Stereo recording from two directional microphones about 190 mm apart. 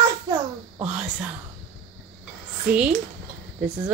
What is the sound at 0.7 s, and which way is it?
Speech, 5° right (ahead or behind).